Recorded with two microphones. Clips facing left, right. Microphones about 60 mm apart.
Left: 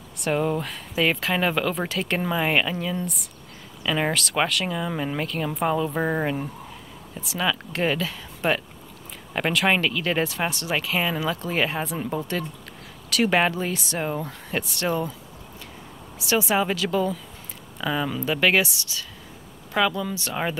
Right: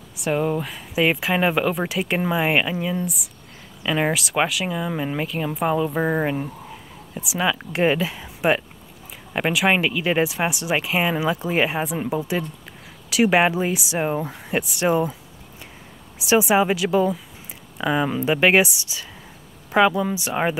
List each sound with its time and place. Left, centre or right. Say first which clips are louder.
0.1 s speech: right 2 dB; centre
9.3 s speech: right 2 dB; centre
16.2 s speech: right 5 dB; centre